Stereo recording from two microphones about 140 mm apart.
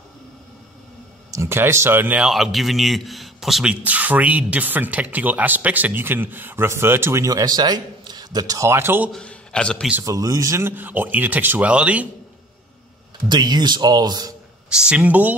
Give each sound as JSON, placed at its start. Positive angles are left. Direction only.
{"t": 1.3, "sound": "speech", "side_deg": -20}
{"t": 9.1, "sound": "a man's voice", "side_deg": 5}
{"t": 10.0, "sound": "speech", "side_deg": -25}
{"t": 13.3, "sound": "speech", "side_deg": -30}
{"t": 14.7, "sound": "speech", "side_deg": -5}